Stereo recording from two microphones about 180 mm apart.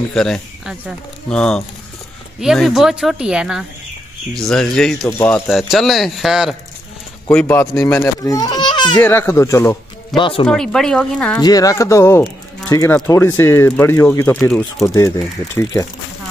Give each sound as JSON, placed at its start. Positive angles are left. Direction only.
{"t": 0.1, "sound": "speech", "side_deg": 0}
{"t": 7.2, "sound": "speech", "side_deg": 10}
{"t": 9.0, "sound": "speech", "side_deg": 15}
{"t": 10.4, "sound": "speech", "side_deg": 5}
{"t": 11.3, "sound": "speech", "side_deg": 20}
{"t": 15.0, "sound": "speech", "side_deg": 15}